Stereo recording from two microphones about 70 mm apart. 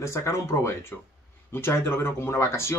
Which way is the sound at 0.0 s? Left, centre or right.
Left.